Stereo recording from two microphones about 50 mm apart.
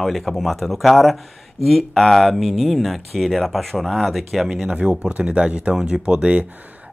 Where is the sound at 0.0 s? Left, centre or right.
Centre.